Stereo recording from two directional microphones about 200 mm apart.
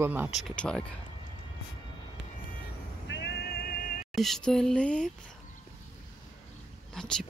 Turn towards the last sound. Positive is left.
turn(degrees=5)  # may be behind; listen again after turning